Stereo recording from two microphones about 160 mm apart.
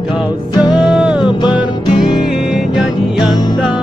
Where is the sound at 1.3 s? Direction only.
30° left (ahead or behind).